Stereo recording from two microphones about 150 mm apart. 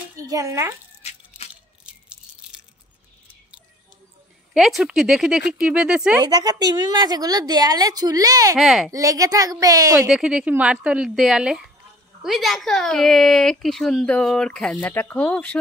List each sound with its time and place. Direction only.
0.2 s a child's voice: 20° right (ahead or behind)
1.3 s a sound: 10° right (ahead or behind)
2.4 s crushing: 5° right (ahead or behind)
4.6 s speech: centre (ahead or behind)
6.2 s a woman's voice: 25° right (ahead or behind)
8.5 s speech: centre (ahead or behind)
8.9 s a woman's voice: 20° right (ahead or behind)
10.0 s speech: 5° right (ahead or behind)